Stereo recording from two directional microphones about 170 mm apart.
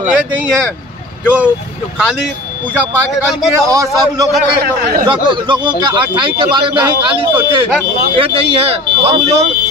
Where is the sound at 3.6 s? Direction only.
20° right (ahead or behind).